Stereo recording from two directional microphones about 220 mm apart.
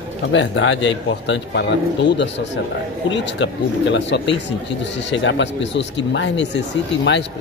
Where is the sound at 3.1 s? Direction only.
55° left (ahead or behind).